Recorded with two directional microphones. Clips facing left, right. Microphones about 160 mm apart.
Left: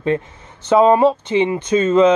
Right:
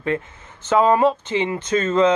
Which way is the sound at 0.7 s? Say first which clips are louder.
Left 4 dB; 15° left (ahead or behind).